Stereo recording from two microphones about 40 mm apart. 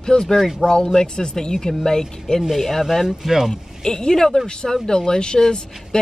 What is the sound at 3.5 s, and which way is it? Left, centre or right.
Speech, centre.